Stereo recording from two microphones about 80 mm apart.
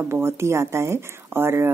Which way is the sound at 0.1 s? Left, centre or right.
Right.